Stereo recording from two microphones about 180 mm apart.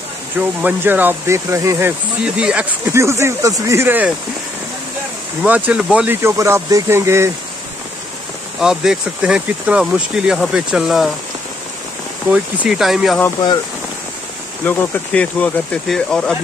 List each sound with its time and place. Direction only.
0.4 s speech: 10° right (ahead or behind)
5.4 s speech: 5° right (ahead or behind)
8.5 s speech: 5° right (ahead or behind)
12.3 s speech: 5° right (ahead or behind)
14.6 s speech: 10° left (ahead or behind)